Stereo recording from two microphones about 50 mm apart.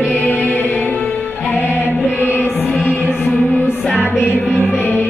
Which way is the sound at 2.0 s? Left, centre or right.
Left.